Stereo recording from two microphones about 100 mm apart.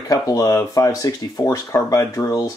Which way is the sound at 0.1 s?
35° left (ahead or behind).